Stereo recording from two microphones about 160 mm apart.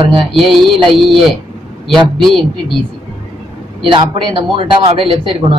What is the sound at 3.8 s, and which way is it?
A man's voice, 30° right (ahead or behind).